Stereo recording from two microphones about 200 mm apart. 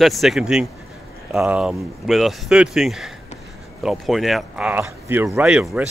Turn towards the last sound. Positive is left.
turn(degrees=-5)  # may be behind; listen again after turning